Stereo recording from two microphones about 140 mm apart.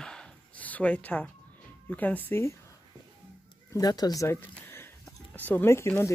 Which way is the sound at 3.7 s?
25° left (ahead or behind).